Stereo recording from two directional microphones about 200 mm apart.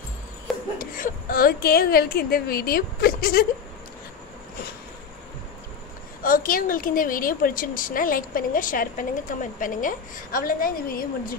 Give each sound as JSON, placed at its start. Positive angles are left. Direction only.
{"t": 0.7, "sound": "speech", "side_deg": 45}
{"t": 6.2, "sound": "speech", "side_deg": 45}